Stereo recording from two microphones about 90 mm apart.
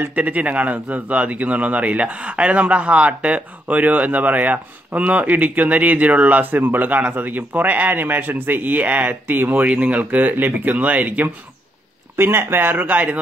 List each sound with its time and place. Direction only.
0.0 s a man's voice: 15° right (ahead or behind)